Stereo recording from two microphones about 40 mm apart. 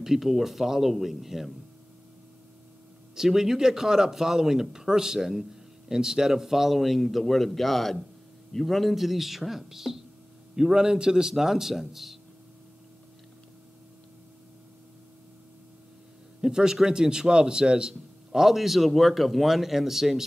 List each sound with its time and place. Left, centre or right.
0.0 s speech: centre
3.2 s speech: centre
16.3 s speech: centre
18.3 s speech: centre